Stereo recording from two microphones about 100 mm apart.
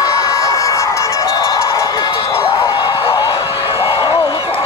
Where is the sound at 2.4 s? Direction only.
40° left (ahead or behind).